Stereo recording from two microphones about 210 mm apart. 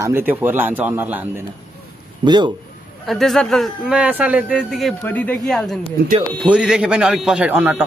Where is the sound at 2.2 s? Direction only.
20° right (ahead or behind).